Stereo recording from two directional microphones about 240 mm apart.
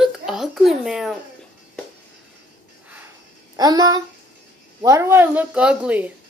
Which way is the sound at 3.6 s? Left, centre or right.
Centre.